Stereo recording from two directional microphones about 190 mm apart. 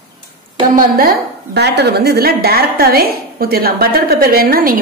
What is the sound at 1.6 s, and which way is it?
A woman's voice, 60° right (ahead or behind).